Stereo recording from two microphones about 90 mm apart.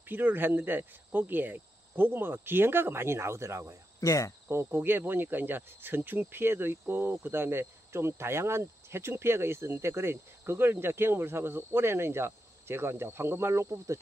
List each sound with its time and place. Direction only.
0.1 s speech: 20° right (ahead or behind)
4.0 s insect: 35° left (ahead or behind)
4.5 s speech: 25° right (ahead or behind)